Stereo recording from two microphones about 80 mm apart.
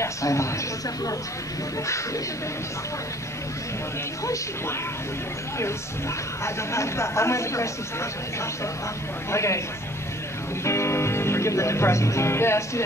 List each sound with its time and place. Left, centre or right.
0.0 s speech: left
5.6 s speech: left
10.6 s speech: left